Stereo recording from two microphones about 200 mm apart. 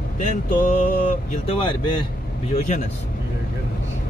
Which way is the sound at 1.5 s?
25° left (ahead or behind).